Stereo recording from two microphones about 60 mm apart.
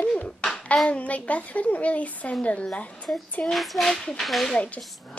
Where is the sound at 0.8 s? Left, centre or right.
Left.